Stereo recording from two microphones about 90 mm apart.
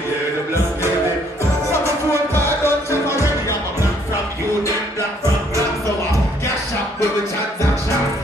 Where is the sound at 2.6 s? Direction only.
30° left (ahead or behind).